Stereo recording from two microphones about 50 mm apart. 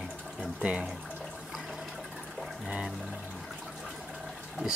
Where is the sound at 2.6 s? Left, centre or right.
Centre.